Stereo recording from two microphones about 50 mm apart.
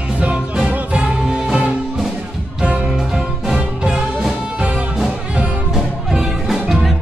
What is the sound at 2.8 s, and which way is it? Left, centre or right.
Music, centre.